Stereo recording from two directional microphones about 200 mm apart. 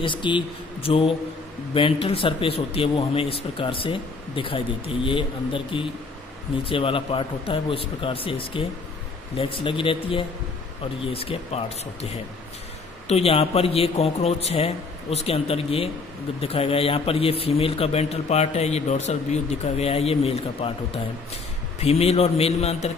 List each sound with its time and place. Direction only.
0.0 s a man's voice: 25° left (ahead or behind)
13.1 s a man's voice: 30° left (ahead or behind)